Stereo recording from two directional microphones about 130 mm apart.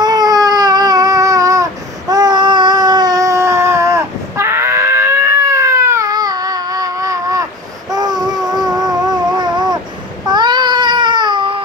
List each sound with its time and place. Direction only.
0.0 s baby cry: 30° right (ahead or behind)
7.9 s a sound: 30° right (ahead or behind)
10.2 s babbling: 35° right (ahead or behind)